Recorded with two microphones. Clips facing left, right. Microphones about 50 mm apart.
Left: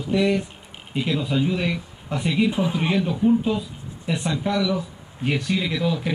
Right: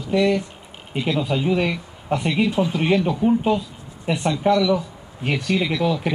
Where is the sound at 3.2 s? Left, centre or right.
Right.